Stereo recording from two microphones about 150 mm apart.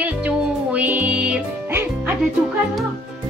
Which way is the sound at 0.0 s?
10° right (ahead or behind).